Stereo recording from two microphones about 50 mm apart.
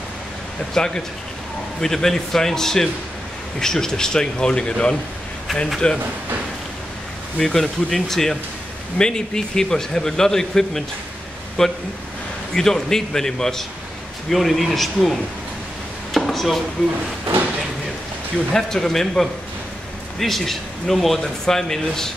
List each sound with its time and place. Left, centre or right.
0.7 s speech: centre
7.3 s a man's voice: centre
16.1 s a sound: centre
18.5 s speech: centre